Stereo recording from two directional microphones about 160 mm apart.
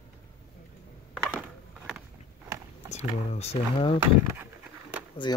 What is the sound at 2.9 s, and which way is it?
Speech, 40° left (ahead or behind).